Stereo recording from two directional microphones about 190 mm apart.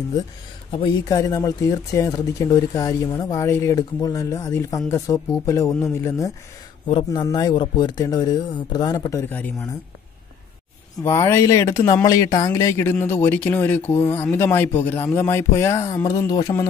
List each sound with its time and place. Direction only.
0.7 s speech: 25° left (ahead or behind)
11.0 s speech: 15° left (ahead or behind)